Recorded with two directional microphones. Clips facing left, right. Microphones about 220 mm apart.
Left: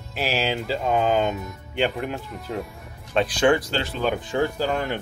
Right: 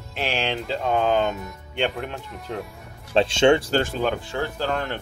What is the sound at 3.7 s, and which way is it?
Speech, 50° right (ahead or behind).